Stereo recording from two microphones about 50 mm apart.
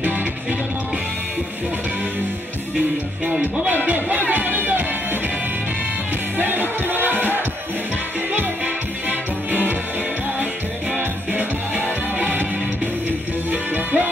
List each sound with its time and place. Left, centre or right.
3.3 s music: right
3.7 s music: right
6.3 s music: right
9.5 s music: right
11.0 s music: right
13.5 s music: right